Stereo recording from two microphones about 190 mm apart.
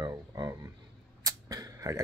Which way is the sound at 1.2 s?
20° right (ahead or behind).